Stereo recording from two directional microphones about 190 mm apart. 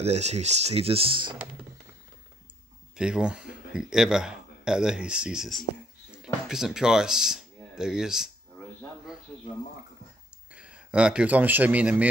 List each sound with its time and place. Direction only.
0.0 s speech: 35° right (ahead or behind)
3.0 s speech: 5° right (ahead or behind)
6.1 s a sound: centre (ahead or behind)
10.5 s speech: 5° right (ahead or behind)